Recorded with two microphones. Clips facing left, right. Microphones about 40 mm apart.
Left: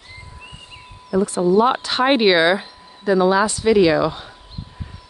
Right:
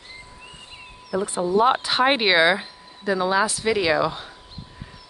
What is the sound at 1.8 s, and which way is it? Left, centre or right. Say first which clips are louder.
Speech: left 3 dB; centre.